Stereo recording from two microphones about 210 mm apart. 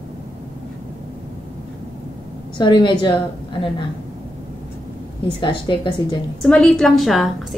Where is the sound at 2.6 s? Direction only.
20° left (ahead or behind).